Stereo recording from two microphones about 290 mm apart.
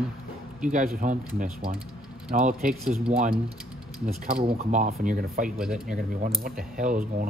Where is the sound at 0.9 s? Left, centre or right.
Right.